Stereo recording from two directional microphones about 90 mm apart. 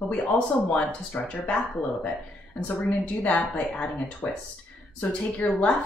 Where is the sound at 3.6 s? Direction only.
5° left (ahead or behind).